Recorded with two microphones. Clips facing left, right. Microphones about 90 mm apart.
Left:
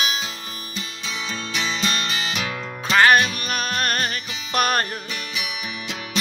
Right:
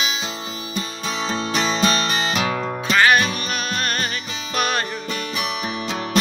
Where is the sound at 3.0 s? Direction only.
50° left (ahead or behind).